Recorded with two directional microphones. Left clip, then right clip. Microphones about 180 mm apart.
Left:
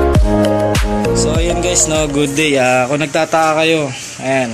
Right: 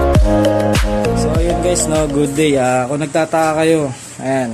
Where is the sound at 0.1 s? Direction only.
Centre (ahead or behind).